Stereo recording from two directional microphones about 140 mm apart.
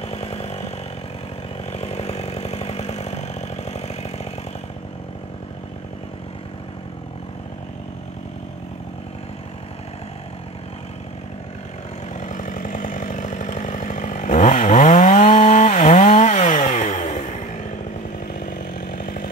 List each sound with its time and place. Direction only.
0.0 s chainsaw: 45° left (ahead or behind)
1.7 s chainsaw: 50° left (ahead or behind)
12.2 s chainsaw: 65° left (ahead or behind)
18.6 s chainsaw: 90° left